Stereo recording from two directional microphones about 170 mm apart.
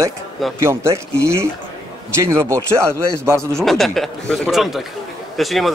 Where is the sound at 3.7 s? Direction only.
Centre (ahead or behind).